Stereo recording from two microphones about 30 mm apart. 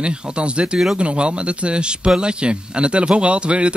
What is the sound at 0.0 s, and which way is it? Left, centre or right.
Speech, right.